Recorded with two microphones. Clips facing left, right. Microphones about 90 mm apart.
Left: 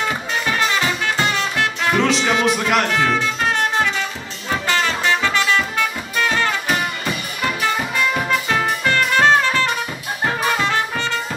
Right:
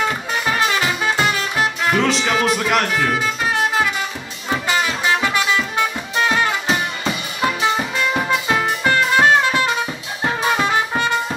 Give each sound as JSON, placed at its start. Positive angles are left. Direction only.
{"t": 0.5, "sound": "music", "side_deg": -5}